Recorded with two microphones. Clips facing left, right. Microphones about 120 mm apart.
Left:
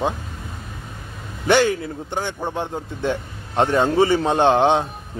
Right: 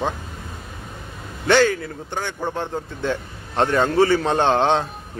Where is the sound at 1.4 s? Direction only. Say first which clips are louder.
Even; 15° left (ahead or behind).